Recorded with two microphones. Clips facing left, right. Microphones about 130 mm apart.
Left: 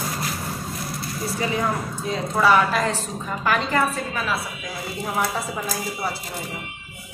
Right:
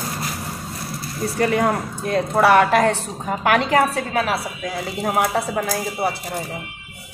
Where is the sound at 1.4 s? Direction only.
65° right (ahead or behind).